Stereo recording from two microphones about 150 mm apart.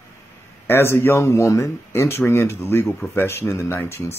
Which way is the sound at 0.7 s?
15° left (ahead or behind).